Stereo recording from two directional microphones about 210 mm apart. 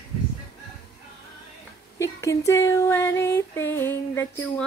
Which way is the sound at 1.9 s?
15° left (ahead or behind).